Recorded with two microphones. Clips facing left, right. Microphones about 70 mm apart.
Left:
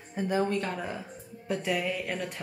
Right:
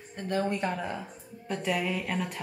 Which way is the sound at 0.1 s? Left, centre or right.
Centre.